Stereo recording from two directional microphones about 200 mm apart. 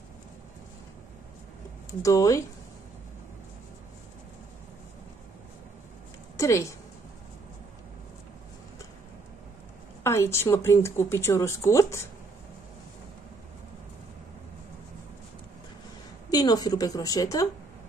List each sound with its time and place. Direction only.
1.9 s a woman's voice: 15° left (ahead or behind)
6.3 s a woman's voice: 15° left (ahead or behind)
10.0 s a woman's voice: 15° left (ahead or behind)
16.3 s a woman's voice: 20° left (ahead or behind)